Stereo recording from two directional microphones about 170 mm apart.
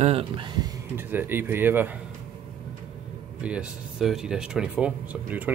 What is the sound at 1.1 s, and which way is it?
Speech, 10° right (ahead or behind).